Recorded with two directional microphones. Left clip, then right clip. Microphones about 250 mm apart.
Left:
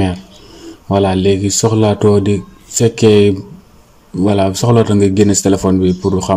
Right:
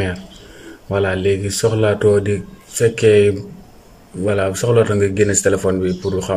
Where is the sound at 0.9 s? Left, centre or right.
Left.